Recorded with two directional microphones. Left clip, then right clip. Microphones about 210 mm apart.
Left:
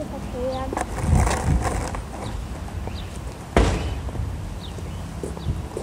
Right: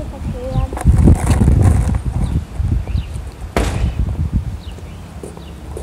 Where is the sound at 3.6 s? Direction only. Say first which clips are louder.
Right 1 dB; 50° right (ahead or behind).